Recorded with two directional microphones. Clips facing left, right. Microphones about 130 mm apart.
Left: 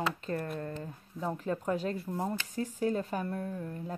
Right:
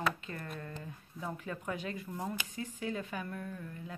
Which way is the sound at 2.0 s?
25° left (ahead or behind).